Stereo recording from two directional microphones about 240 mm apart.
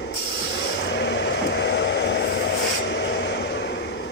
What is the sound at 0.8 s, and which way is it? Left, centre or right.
Vehicle, left.